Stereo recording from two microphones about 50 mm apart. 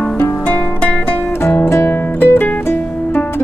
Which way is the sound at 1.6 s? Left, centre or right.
Left.